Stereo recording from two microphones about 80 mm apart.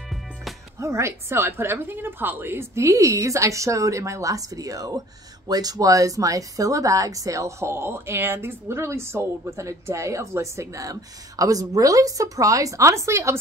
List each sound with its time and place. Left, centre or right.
0.7 s speech: right